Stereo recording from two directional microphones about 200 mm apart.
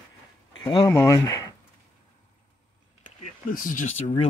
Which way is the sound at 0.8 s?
15° left (ahead or behind).